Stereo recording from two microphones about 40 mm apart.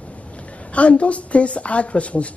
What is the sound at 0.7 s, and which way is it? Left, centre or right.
Speech, left.